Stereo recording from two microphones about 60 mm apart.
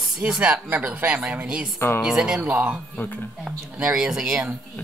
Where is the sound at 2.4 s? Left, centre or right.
Right.